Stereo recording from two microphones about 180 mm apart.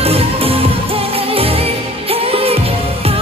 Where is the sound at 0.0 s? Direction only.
35° right (ahead or behind).